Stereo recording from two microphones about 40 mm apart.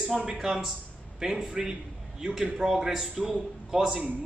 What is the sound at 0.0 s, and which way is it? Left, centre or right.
A man's voice, right.